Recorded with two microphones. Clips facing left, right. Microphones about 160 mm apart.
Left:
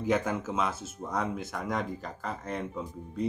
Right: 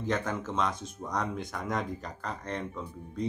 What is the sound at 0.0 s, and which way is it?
Speech, 10° left (ahead or behind).